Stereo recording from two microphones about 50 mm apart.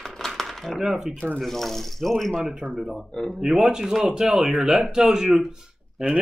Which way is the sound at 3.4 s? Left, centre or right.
Centre.